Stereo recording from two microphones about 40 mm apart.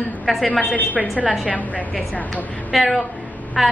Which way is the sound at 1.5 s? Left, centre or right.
Left.